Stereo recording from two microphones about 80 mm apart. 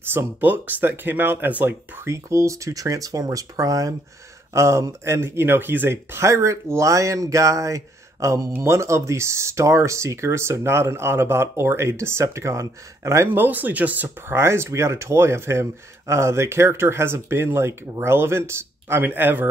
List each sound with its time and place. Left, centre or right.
0.0 s speech: right
2.0 s speech: right
13.3 s speech: right